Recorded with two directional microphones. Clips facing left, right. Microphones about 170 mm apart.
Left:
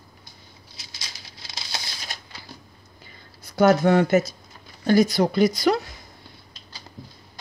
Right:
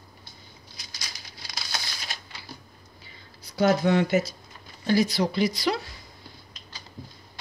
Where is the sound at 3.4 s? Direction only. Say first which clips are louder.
Left 5 dB; 50° left (ahead or behind).